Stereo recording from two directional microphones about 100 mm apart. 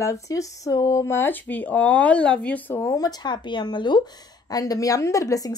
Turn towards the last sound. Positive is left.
turn(degrees=35)  # may be behind; listen again after turning